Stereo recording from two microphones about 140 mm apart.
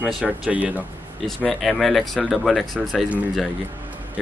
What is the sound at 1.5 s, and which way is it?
Speech, centre (ahead or behind).